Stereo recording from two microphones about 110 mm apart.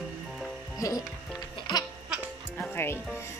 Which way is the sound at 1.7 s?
45° left (ahead or behind).